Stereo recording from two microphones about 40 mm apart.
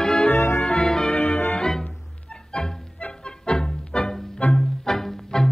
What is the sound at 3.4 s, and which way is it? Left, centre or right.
Music, left.